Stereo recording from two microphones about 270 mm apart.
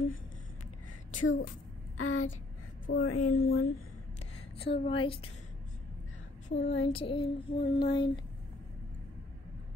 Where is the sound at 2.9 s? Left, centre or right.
Left.